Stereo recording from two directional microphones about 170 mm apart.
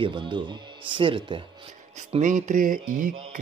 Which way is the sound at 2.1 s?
45° right (ahead or behind).